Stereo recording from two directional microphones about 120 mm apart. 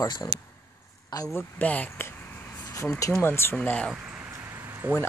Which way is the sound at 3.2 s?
20° left (ahead or behind).